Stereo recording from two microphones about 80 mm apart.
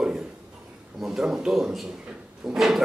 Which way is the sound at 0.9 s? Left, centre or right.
Centre.